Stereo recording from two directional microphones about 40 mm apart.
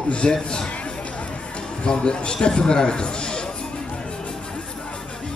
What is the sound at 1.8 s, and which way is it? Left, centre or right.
A man's voice, left.